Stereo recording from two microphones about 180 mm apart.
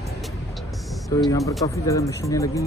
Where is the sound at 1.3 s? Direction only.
20° left (ahead or behind).